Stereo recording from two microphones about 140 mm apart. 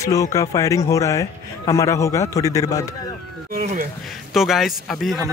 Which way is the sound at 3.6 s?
60° right (ahead or behind).